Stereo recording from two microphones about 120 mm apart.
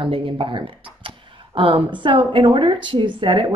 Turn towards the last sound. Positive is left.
turn(degrees=-45)  # may be behind; listen again after turning